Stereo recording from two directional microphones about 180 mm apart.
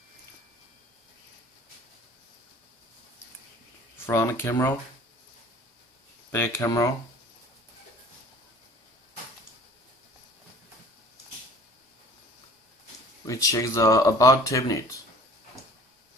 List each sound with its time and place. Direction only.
4.0 s speech: 15° left (ahead or behind)
6.3 s speech: 15° left (ahead or behind)
13.3 s speech: 20° left (ahead or behind)